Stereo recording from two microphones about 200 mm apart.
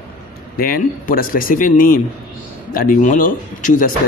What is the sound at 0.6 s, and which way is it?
A man's voice, 45° left (ahead or behind).